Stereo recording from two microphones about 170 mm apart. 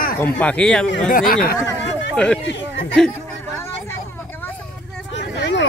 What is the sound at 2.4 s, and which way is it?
Speech, 90° left.